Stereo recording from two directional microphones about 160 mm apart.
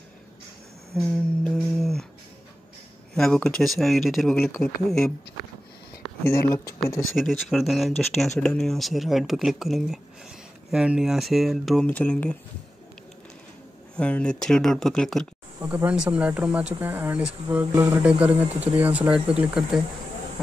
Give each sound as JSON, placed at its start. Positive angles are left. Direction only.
{"t": 0.9, "sound": "humming", "side_deg": 5}
{"t": 3.2, "sound": "speech", "side_deg": 5}
{"t": 4.4, "sound": "speech", "side_deg": 20}
{"t": 6.2, "sound": "speech", "side_deg": 15}
{"t": 7.2, "sound": "speech", "side_deg": 0}
{"t": 13.9, "sound": "speech", "side_deg": 5}
{"t": 15.6, "sound": "speech", "side_deg": -10}